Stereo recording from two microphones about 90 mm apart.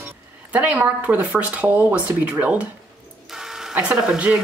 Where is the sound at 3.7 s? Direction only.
15° right (ahead or behind).